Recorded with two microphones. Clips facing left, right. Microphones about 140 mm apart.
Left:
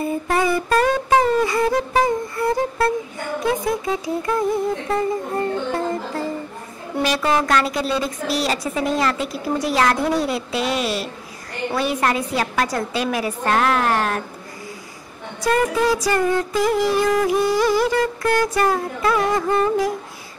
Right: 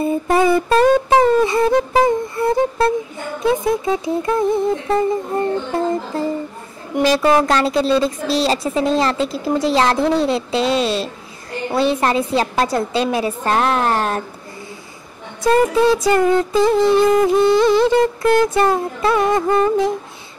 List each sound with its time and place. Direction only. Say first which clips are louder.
0.0 s music: right 5 dB; 25° right (ahead or behind)
3.4 s speech: right 5 dB; 25° right (ahead or behind)
15.4 s speech: right 5 dB; 25° right (ahead or behind)